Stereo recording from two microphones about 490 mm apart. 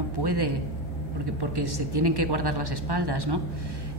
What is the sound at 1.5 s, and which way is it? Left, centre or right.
A woman's voice, right.